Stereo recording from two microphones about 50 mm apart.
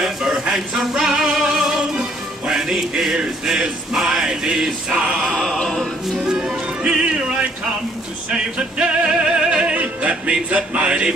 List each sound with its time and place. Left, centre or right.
0.0 s music: centre
4.8 s male singing: centre
5.1 s opera: centre
5.6 s music: centre
6.2 s music: centre